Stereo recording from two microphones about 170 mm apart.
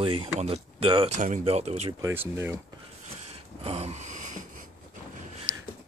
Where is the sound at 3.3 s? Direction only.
35° right (ahead or behind).